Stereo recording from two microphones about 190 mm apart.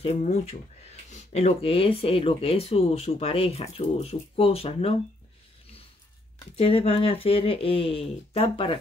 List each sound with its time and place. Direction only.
0.0 s speech: 35° left (ahead or behind)
6.5 s speech: 30° left (ahead or behind)